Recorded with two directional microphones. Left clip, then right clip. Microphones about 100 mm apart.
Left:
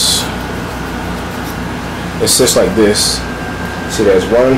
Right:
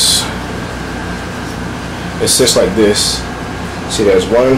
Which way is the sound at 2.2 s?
15° left (ahead or behind).